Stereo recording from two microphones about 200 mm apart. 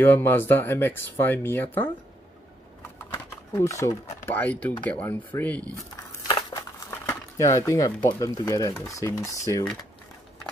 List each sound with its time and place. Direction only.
0.0 s speech: 10° left (ahead or behind)
3.1 s speech: 15° left (ahead or behind)
5.8 s crumpling: 15° left (ahead or behind)
8.2 s speech: 15° left (ahead or behind)